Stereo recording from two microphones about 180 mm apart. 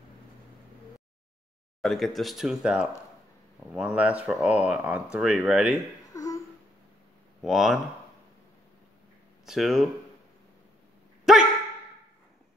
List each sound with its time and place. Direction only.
1.8 s speech: centre (ahead or behind)
6.1 s a sound: 20° left (ahead or behind)
7.4 s speech: centre (ahead or behind)
9.5 s speech: centre (ahead or behind)
11.3 s dog: centre (ahead or behind)